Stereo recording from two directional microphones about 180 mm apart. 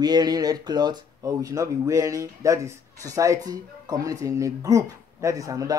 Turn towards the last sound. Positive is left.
turn(degrees=-20)  # may be behind; listen again after turning